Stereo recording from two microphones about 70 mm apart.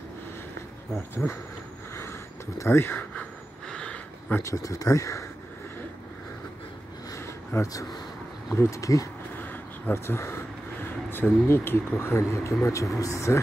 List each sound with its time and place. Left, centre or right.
0.9 s speech: left
2.0 s a sound: left
2.8 s speech: left
3.2 s vehicle: centre
4.4 s speech: left
7.5 s speech: left
9.4 s a sound: left
9.9 s speech: left